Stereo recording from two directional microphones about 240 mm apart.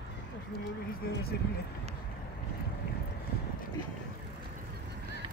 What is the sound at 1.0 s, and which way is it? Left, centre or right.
Speech, left.